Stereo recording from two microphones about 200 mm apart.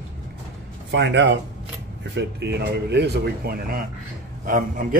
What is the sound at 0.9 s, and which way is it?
A man's voice, 60° right (ahead or behind).